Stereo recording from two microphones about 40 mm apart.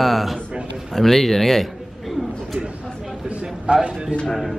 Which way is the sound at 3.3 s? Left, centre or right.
Right.